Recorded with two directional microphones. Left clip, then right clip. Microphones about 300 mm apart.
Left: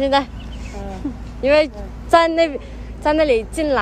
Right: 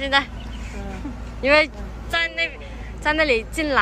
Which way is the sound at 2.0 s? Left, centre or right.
Centre.